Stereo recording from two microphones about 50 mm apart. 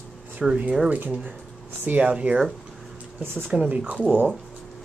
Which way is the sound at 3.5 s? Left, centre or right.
Right.